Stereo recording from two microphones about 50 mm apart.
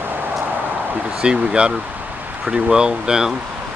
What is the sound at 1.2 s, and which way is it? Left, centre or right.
Speech, centre.